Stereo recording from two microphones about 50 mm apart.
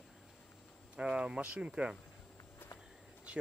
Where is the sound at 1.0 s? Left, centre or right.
Right.